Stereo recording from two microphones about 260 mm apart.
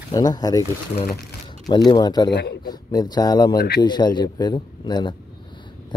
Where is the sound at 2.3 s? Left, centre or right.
Left.